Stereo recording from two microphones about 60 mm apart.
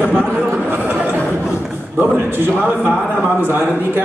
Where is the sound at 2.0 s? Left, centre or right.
Right.